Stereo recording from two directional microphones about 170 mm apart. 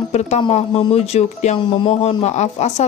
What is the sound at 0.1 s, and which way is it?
Speech, 40° left (ahead or behind).